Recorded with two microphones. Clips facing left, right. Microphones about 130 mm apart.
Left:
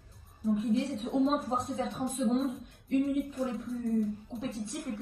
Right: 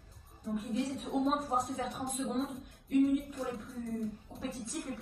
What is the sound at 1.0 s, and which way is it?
A woman's voice, 25° left (ahead or behind).